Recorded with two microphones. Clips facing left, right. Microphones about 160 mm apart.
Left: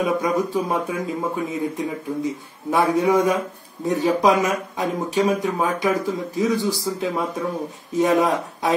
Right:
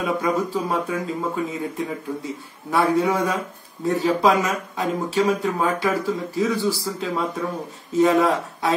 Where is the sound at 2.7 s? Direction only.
15° left (ahead or behind).